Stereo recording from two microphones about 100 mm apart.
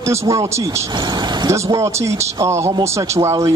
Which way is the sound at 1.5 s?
30° right (ahead or behind).